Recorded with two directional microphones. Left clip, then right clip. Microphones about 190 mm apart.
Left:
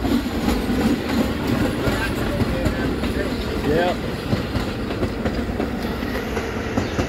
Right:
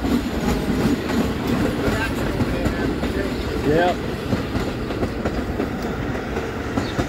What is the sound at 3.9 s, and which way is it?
Train, 60° right (ahead or behind).